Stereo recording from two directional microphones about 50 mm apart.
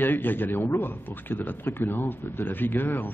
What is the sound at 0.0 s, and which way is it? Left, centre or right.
A man's voice, left.